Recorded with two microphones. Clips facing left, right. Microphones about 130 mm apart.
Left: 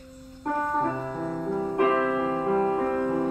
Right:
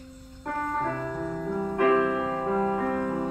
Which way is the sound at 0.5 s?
10° left (ahead or behind).